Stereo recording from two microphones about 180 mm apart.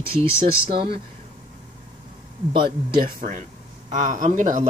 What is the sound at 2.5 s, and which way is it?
Speech, 25° right (ahead or behind).